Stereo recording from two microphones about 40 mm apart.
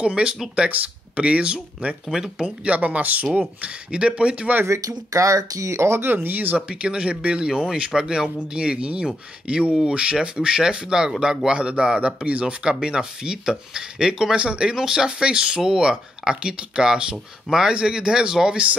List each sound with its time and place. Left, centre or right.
0.0 s speech: right
0.7 s speech: right
2.0 s speech: centre
2.6 s speech: right
3.3 s speech: right
5.9 s speech: right
6.2 s speech: right
6.7 s speech: right
12.6 s speech: right
14.3 s speech: right
14.8 s speech: centre